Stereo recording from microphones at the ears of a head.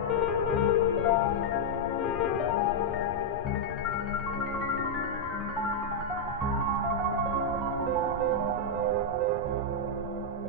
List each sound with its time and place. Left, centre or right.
0.1 s music: left
8.8 s music: right